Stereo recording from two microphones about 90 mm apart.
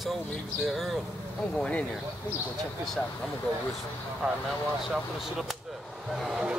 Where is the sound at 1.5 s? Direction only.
10° left (ahead or behind).